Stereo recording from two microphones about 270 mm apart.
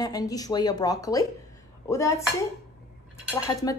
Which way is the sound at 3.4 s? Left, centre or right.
Centre.